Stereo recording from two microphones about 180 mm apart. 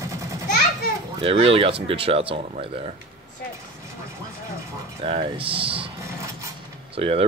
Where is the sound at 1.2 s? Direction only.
30° right (ahead or behind).